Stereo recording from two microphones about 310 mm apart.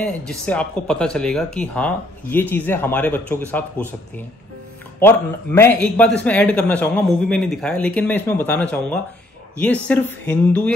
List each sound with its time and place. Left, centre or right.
0.0 s a man's voice: centre
5.0 s a man's voice: centre